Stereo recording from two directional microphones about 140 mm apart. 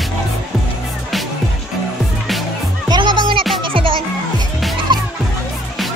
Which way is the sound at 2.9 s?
35° right (ahead or behind).